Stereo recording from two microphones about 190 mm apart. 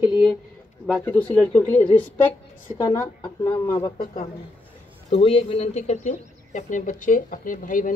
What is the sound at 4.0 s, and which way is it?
Speech, 45° left (ahead or behind).